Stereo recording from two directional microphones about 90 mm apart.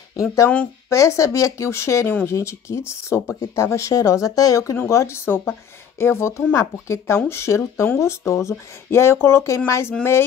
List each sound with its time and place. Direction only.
0.1 s speech: 35° left (ahead or behind)